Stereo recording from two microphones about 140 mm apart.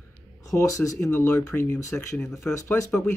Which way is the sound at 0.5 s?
20° left (ahead or behind).